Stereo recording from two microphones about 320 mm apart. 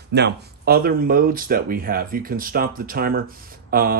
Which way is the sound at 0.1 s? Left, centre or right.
Right.